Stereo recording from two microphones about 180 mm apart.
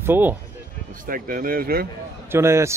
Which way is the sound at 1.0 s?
50° right (ahead or behind).